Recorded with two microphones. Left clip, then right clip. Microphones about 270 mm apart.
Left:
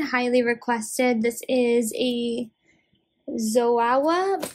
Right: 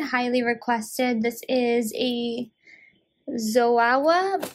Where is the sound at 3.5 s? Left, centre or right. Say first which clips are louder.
Right 1 dB; right.